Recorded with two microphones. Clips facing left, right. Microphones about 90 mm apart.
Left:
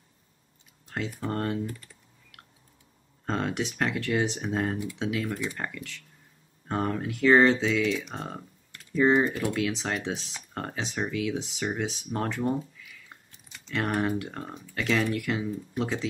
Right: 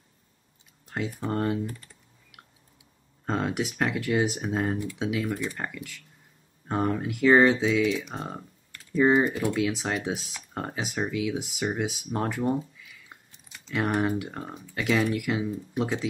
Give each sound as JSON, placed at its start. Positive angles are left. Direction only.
{"t": 0.8, "sound": "speech", "side_deg": -5}
{"t": 2.3, "sound": "chewing", "side_deg": -5}
{"t": 3.3, "sound": "speech", "side_deg": -5}